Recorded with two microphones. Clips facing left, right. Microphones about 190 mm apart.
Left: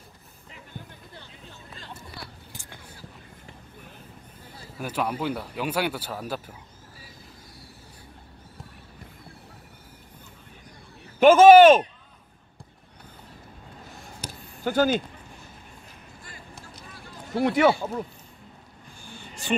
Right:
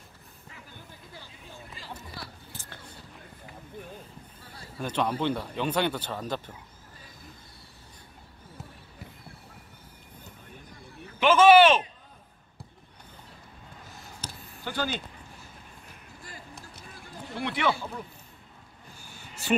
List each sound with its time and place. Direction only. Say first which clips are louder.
2.5 s whispering: left 1 dB; 15° left (ahead or behind)
4.7 s speech: even; 5° left (ahead or behind)
11.1 s a man's voice: left 6 dB; 45° left (ahead or behind)
14.6 s speech: left 10 dB; 45° left (ahead or behind)
17.3 s speech: left 8 dB; 45° left (ahead or behind)